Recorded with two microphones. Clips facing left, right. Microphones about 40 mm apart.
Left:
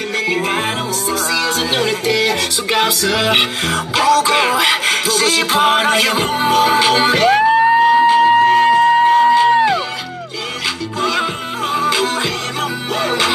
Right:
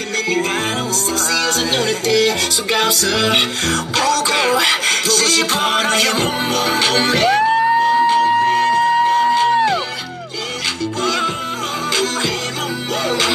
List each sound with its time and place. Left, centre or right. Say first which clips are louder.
0.3 s music: even; centre
11.0 s music: left 2 dB; centre